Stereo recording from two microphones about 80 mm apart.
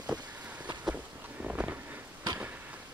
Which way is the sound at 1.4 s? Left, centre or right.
Right.